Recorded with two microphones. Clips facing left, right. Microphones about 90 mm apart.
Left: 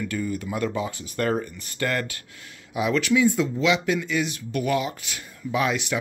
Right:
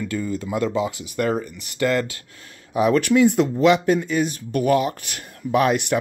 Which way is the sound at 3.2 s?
65° right (ahead or behind).